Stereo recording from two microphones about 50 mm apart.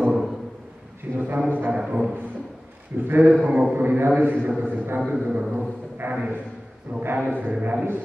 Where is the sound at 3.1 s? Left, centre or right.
Right.